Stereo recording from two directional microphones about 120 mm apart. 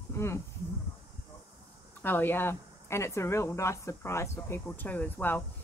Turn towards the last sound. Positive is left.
turn(degrees=15)  # may be behind; listen again after turning